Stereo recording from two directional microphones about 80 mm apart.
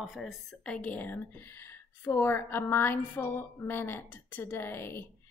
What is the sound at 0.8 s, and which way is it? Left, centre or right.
A woman's voice, left.